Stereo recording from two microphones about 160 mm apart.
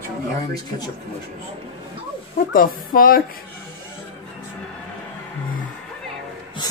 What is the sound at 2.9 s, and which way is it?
Speech, 65° left (ahead or behind).